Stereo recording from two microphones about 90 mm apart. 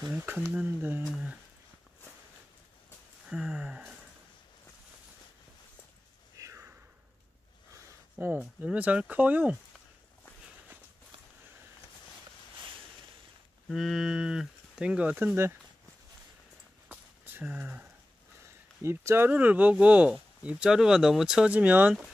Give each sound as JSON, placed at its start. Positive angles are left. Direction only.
{"t": 0.1, "sound": "speech", "side_deg": -20}
{"t": 3.3, "sound": "speech", "side_deg": -5}
{"t": 6.3, "sound": "a sound", "side_deg": -40}
{"t": 8.4, "sound": "speech", "side_deg": -15}
{"t": 13.7, "sound": "speech", "side_deg": 0}
{"t": 17.2, "sound": "speech", "side_deg": -20}
{"t": 18.8, "sound": "speech", "side_deg": -30}